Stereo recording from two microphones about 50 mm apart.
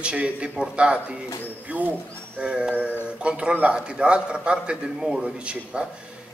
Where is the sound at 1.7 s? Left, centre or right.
Right.